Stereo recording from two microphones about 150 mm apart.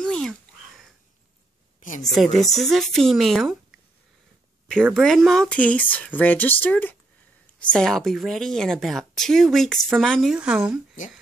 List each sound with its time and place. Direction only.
0.0 s a sound: 5° left (ahead or behind)
2.0 s a woman's voice: centre (ahead or behind)
4.9 s a woman's voice: centre (ahead or behind)